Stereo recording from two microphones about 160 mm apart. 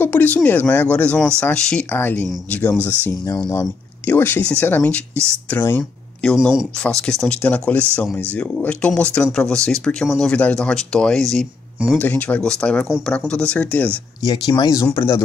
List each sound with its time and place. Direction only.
0.0 s speech: 10° left (ahead or behind)
6.3 s speech: 5° right (ahead or behind)
14.2 s speech: 25° left (ahead or behind)